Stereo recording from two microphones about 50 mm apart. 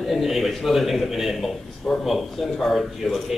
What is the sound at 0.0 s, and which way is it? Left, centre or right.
A man's voice, centre.